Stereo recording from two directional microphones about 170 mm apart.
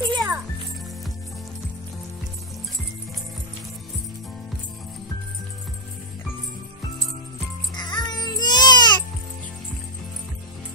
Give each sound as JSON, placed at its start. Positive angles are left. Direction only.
{"t": 0.1, "sound": "music", "side_deg": -20}
{"t": 7.7, "sound": "baby cry", "side_deg": 25}